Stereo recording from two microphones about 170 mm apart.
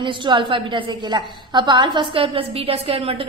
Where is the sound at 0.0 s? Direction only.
30° right (ahead or behind).